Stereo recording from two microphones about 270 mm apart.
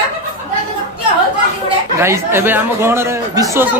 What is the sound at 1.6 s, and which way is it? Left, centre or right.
A man's voice, centre.